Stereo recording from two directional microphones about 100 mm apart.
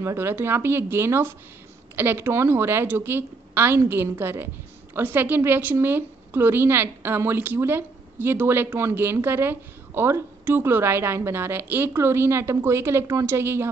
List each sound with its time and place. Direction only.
0.0 s a woman's voice: 25° right (ahead or behind)